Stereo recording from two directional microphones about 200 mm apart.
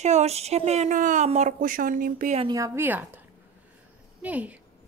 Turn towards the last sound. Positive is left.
turn(degrees=-10)  # may be behind; listen again after turning